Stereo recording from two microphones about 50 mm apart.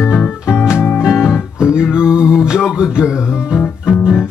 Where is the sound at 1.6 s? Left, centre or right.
Centre.